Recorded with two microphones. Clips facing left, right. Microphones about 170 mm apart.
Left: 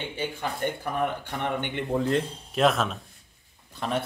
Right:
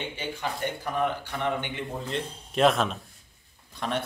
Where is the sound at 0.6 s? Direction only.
50° left (ahead or behind).